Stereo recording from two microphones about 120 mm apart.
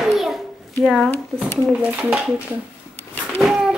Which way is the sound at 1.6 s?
10° right (ahead or behind).